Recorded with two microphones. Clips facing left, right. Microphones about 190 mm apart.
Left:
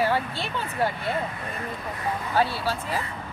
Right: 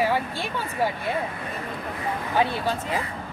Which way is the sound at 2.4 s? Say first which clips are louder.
Right 1 dB; 15° right (ahead or behind).